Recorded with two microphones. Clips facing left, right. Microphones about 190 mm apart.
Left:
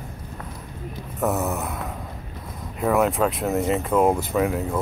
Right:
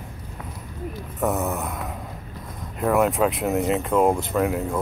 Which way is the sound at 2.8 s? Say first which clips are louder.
Even; centre (ahead or behind).